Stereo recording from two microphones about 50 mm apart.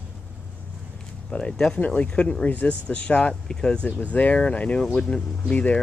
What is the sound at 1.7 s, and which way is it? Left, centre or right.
Speech, left.